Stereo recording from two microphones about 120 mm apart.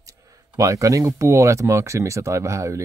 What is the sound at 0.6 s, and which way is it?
Speech, 25° right (ahead or behind).